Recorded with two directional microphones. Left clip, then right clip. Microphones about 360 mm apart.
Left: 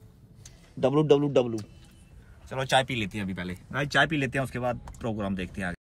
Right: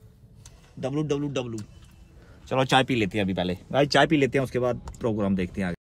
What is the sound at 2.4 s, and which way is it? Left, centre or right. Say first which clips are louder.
Speech: right 3 dB; centre.